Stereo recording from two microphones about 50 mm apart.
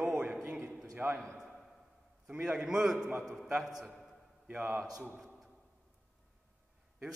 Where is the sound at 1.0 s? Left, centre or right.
Right.